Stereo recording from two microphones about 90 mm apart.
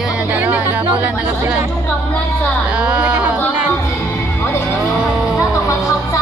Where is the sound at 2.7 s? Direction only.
15° right (ahead or behind).